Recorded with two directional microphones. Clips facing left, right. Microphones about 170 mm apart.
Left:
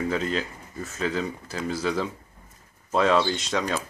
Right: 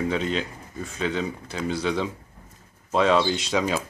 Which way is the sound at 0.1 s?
Centre (ahead or behind).